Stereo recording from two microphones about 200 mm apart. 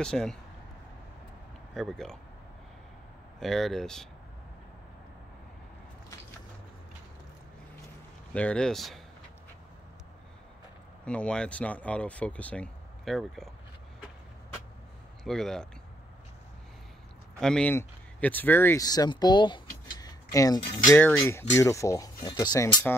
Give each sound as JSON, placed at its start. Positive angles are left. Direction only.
{"t": 0.0, "sound": "speech", "side_deg": 5}
{"t": 1.7, "sound": "speech", "side_deg": 0}
{"t": 3.3, "sound": "speech", "side_deg": 0}
{"t": 8.3, "sound": "speech", "side_deg": 5}
{"t": 11.1, "sound": "speech", "side_deg": 5}
{"t": 15.2, "sound": "speech", "side_deg": 0}
{"t": 17.4, "sound": "speech", "side_deg": 5}
{"t": 21.0, "sound": "speech", "side_deg": 10}